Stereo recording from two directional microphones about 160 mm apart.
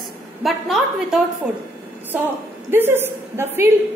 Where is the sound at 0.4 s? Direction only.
Centre (ahead or behind).